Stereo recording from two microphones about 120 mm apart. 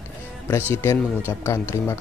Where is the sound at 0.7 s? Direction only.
20° left (ahead or behind).